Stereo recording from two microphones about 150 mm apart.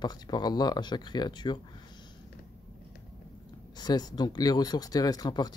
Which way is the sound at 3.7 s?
25° left (ahead or behind).